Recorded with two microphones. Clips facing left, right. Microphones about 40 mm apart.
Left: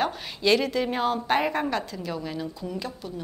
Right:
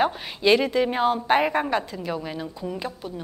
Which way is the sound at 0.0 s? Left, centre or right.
Centre.